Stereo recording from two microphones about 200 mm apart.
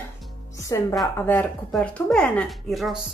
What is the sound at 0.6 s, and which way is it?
A woman's voice, 15° left (ahead or behind).